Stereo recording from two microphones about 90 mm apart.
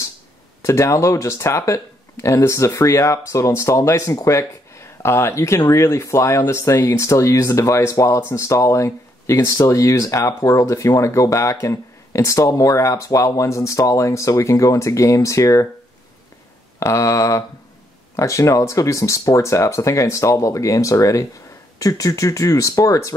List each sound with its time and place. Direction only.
0.6 s speech: 35° left (ahead or behind)
16.8 s speech: 35° left (ahead or behind)